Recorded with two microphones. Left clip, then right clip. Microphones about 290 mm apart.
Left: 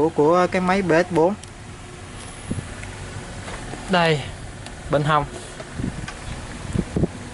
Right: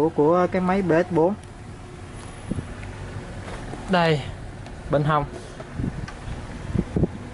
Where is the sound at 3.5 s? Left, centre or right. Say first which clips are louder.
Left 2 dB; centre.